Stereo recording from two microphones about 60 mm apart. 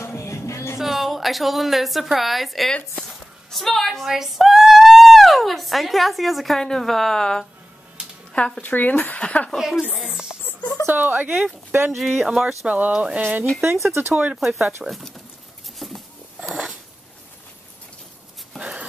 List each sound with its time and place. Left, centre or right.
0.0 s music: left
0.7 s a woman's voice: centre
3.0 s a sound: centre
4.1 s speech: centre
8.6 s speech: left
9.6 s speech: centre
10.0 s music: centre
10.9 s speech: right
11.9 s speech: centre
12.6 s speech: right
13.6 s speech: right
14.4 s speech: centre
15.8 s a sound: centre
18.6 s a sound: centre